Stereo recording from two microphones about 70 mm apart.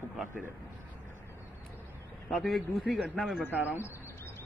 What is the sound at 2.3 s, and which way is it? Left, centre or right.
Speech, centre.